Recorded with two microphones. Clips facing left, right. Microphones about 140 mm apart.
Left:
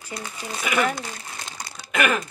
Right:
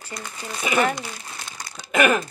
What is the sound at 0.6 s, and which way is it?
Speech, 25° right (ahead or behind).